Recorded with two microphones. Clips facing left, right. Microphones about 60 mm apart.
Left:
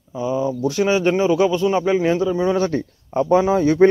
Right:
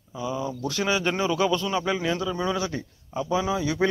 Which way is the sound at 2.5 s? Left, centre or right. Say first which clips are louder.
Left 9 dB; left.